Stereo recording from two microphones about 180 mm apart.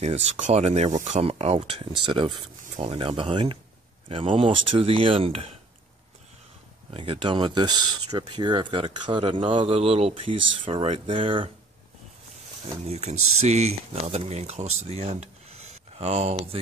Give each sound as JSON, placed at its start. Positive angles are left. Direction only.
{"t": 0.0, "sound": "speech", "side_deg": -40}
{"t": 6.9, "sound": "speech", "side_deg": -30}
{"t": 12.8, "sound": "speech", "side_deg": -35}